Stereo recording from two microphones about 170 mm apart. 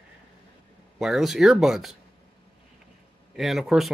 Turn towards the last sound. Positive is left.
turn(degrees=0)  # may be behind; listen again after turning